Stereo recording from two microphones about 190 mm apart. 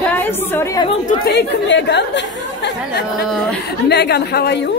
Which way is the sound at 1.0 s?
55° left (ahead or behind).